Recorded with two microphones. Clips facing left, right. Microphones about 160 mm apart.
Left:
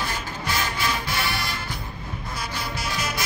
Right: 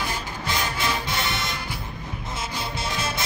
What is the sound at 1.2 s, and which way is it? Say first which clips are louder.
Music: even; 20° right (ahead or behind).